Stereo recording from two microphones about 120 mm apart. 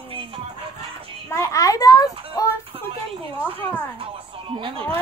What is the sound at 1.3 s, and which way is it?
A child's voice, 25° left (ahead or behind).